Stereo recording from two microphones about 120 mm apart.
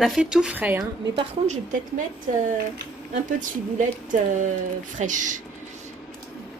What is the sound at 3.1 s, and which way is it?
Speech, 90° right.